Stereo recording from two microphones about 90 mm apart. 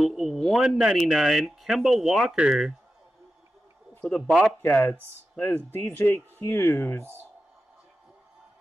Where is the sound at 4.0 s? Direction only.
5° left (ahead or behind).